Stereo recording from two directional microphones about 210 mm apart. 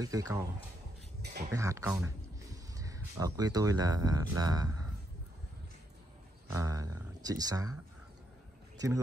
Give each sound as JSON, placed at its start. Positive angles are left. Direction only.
{"t": 0.0, "sound": "speech", "side_deg": -15}
{"t": 1.2, "sound": "speech", "side_deg": -50}
{"t": 1.5, "sound": "speech", "side_deg": -15}
{"t": 6.5, "sound": "speech", "side_deg": -15}
{"t": 8.7, "sound": "a sound", "side_deg": -15}